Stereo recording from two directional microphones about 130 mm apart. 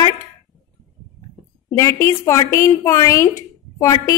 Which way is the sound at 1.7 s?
20° left (ahead or behind).